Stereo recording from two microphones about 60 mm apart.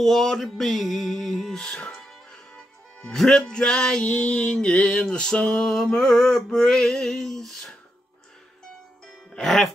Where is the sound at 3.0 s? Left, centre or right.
Centre.